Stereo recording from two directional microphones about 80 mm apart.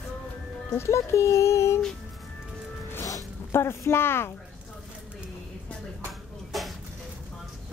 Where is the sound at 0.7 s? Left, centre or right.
Left.